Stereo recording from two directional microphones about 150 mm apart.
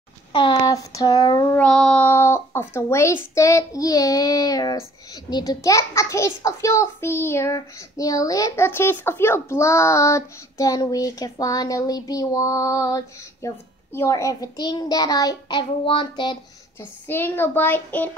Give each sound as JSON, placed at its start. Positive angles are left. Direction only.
{"t": 0.3, "sound": "a child's voice", "side_deg": 35}
{"t": 1.6, "sound": "a child's voice", "side_deg": 5}
{"t": 17.1, "sound": "a child's voice", "side_deg": 15}